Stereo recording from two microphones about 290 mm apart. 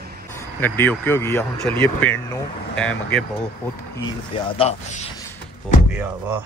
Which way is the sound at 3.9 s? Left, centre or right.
Centre.